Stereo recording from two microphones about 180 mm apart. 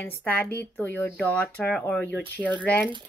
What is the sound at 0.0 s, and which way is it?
Speech, 10° left (ahead or behind).